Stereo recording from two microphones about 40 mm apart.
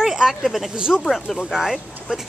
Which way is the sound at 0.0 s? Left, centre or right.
Centre.